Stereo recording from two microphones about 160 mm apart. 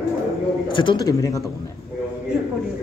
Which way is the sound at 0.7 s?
25° left (ahead or behind).